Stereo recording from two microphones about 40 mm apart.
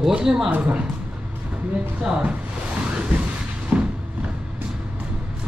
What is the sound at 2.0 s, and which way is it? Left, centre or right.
Speech, right.